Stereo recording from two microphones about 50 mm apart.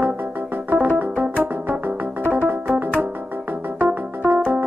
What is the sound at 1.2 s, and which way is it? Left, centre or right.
Music, right.